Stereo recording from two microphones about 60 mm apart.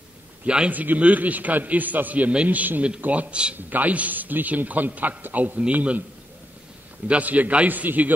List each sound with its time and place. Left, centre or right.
0.7 s a man's voice: right
7.1 s a man's voice: right